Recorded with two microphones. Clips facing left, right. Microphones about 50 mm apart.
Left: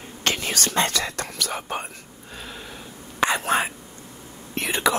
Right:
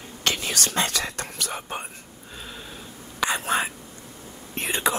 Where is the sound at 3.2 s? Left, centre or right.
Left.